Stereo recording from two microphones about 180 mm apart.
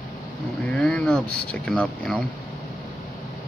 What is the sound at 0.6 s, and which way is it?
Speech, 5° left (ahead or behind).